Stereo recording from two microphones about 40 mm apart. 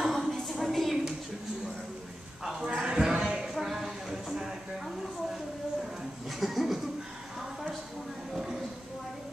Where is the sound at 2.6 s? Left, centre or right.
Right.